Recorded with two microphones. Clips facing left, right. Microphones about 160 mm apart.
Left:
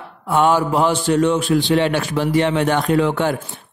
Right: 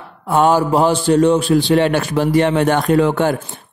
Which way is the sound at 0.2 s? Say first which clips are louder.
Right 2 dB; 40° right (ahead or behind).